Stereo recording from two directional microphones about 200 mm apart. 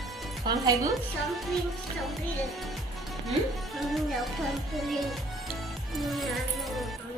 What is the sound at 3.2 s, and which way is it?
A woman's voice, centre (ahead or behind).